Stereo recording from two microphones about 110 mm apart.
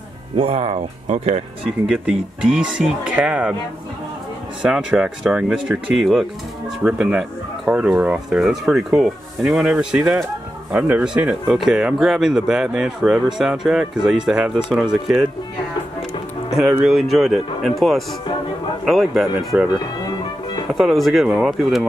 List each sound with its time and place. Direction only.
0.4 s speech: 60° right (ahead or behind); by 1.4 s 80° right
1.9 s speech: 5° right (ahead or behind)
4.6 s speech: 5° right (ahead or behind)
16.5 s speech: 5° right (ahead or behind)